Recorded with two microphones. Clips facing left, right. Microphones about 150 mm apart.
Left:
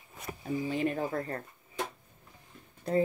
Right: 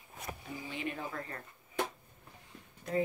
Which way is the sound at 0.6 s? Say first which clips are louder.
Left 8 dB; 40° left (ahead or behind).